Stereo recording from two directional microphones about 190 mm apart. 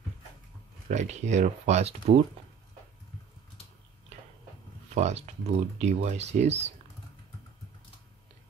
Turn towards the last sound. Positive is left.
turn(degrees=-35)  # may be behind; listen again after turning